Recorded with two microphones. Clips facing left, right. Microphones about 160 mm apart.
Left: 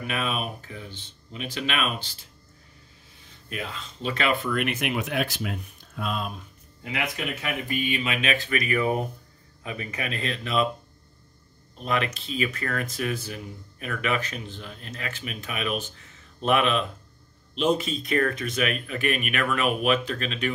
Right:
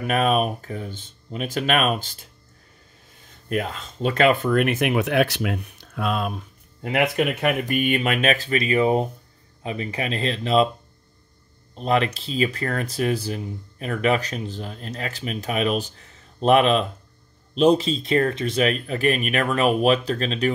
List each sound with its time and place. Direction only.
0.0 s speech: 45° right (ahead or behind)
3.4 s speech: 45° right (ahead or behind)
11.7 s speech: 35° right (ahead or behind)